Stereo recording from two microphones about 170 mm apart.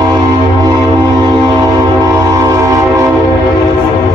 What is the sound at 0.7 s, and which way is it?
Music, 20° right (ahead or behind).